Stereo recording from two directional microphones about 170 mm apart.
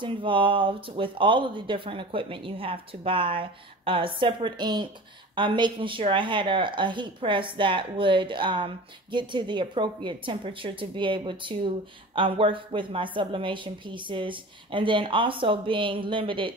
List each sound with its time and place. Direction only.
0.0 s speech: 30° right (ahead or behind)